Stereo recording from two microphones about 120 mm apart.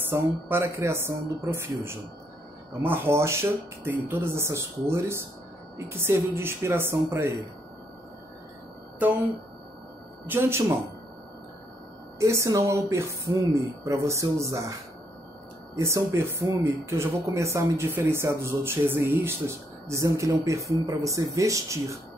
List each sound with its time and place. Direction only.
0.1 s speech: 20° right (ahead or behind)
2.8 s speech: 20° right (ahead or behind)
10.2 s speech: 15° right (ahead or behind)
12.2 s speech: 25° right (ahead or behind)
15.7 s speech: 25° right (ahead or behind)